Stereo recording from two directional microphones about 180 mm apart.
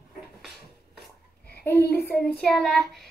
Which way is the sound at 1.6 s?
10° left (ahead or behind).